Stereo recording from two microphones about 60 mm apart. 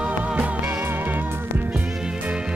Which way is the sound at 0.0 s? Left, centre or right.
Centre.